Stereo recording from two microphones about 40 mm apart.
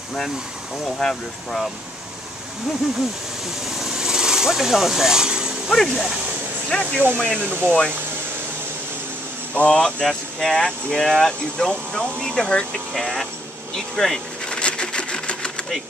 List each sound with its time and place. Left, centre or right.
0.8 s speech: centre
3.6 s speech: centre
5.7 s speech: centre; by 7.9 s left
9.7 s speech: left
10.0 s speech: centre
12.9 s speech: centre
14.5 s sewing machine: left